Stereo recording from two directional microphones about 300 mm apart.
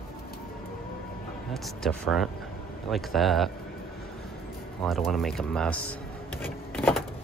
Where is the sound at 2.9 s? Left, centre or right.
Centre.